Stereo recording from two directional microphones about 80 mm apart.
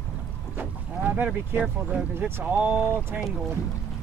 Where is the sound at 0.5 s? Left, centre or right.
Right.